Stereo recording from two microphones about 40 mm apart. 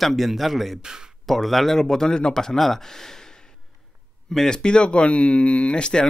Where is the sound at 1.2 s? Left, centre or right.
Centre.